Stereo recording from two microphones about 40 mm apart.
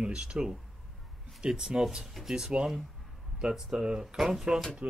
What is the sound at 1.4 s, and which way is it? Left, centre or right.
Speech, centre.